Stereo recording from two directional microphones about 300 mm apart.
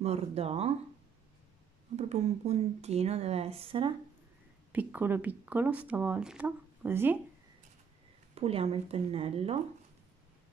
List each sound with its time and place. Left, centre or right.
0.0 s speech: right
2.0 s speech: right
4.7 s speech: centre
8.4 s speech: centre